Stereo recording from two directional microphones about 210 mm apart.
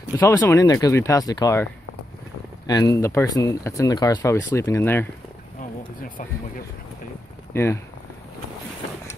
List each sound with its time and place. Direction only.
0.2 s speech: 15° left (ahead or behind)
5.6 s a sound: 40° left (ahead or behind)
7.5 s speech: 10° left (ahead or behind)